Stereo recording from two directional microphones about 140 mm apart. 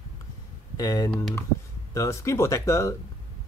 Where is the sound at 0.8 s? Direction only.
25° left (ahead or behind).